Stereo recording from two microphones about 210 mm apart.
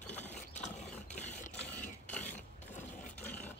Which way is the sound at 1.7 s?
10° left (ahead or behind).